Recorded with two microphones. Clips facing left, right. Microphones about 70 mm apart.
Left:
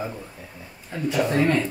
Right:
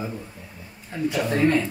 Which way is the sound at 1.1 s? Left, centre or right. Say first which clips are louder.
Even; centre.